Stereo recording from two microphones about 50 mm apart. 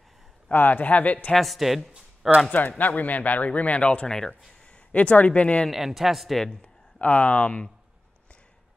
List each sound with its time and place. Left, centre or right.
0.5 s speech: left
1.3 s a man's voice: centre
2.8 s speech: left
5.7 s a man's voice: centre
6.6 s speech: left